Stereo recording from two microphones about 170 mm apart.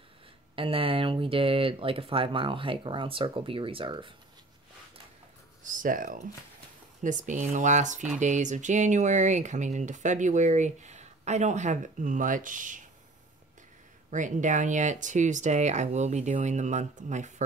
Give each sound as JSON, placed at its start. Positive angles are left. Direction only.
{"t": 0.6, "sound": "speech", "side_deg": -30}
{"t": 5.6, "sound": "speech", "side_deg": -50}
{"t": 14.1, "sound": "speech", "side_deg": -45}